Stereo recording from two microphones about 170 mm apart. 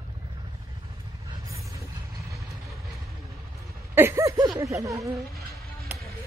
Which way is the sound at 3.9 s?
15° right (ahead or behind).